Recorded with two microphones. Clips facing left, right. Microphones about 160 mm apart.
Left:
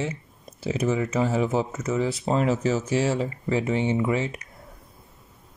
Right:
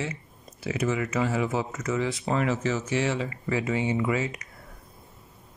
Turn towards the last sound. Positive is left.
turn(degrees=25)  # may be behind; listen again after turning